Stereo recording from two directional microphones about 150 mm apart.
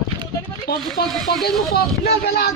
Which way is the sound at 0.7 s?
90° left.